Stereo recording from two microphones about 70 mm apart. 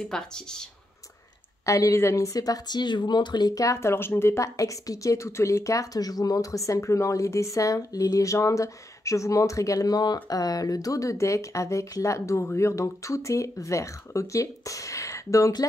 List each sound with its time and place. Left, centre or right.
0.0 s speech: centre
1.7 s speech: left
3.5 s speech: left